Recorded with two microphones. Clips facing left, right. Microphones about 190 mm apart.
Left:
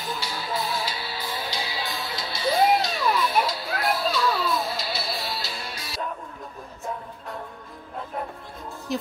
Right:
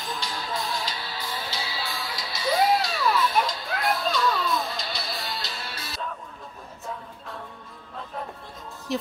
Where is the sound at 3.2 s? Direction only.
5° left (ahead or behind).